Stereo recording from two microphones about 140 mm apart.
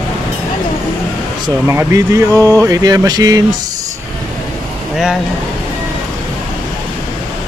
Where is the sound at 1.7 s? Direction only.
20° right (ahead or behind).